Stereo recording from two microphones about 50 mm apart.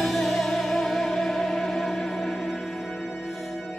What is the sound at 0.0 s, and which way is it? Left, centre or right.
Music, centre.